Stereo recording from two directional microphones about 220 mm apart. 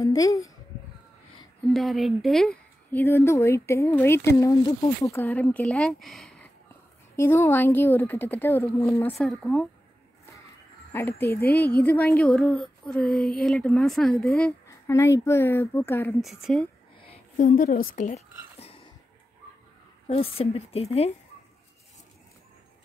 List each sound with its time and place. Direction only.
0.0 s speech: 15° left (ahead or behind)
1.7 s speech: centre (ahead or behind); by 9.2 s 15° left (ahead or behind)
9.2 s a woman's voice: centre (ahead or behind)
10.9 s a woman's voice: 10° left (ahead or behind)
16.2 s a woman's voice: centre (ahead or behind)
17.1 s a sound: 35° left (ahead or behind)
17.9 s whispering: 35° left (ahead or behind)
20.1 s a woman's voice: 25° left (ahead or behind)